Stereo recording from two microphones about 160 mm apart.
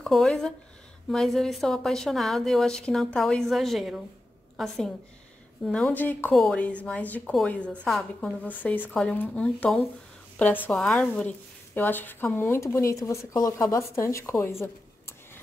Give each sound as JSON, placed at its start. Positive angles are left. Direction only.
{"t": 0.0, "sound": "a woman's voice", "side_deg": 0}